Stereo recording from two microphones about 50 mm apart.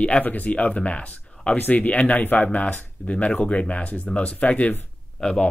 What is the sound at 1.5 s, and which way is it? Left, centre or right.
Speech, left.